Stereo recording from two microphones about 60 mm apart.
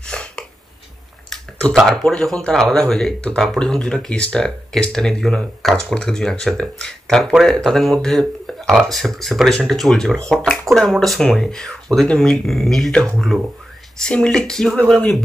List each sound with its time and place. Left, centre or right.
0.0 s a sound: centre
1.9 s speech: centre
12.9 s speech: centre